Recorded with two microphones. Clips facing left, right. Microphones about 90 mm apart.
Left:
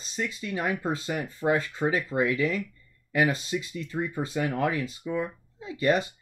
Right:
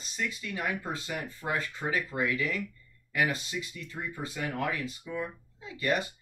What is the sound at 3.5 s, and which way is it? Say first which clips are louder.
Speech: left 8 dB; 35° left (ahead or behind).